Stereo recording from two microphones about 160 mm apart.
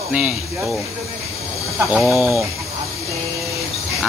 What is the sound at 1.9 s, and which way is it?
Speech, centre (ahead or behind).